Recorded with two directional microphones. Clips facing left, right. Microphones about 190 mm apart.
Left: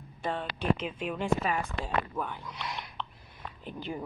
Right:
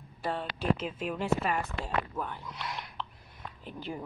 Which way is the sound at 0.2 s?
5° right (ahead or behind).